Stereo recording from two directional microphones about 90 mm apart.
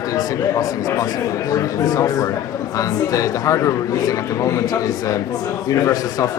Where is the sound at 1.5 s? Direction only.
40° left (ahead or behind).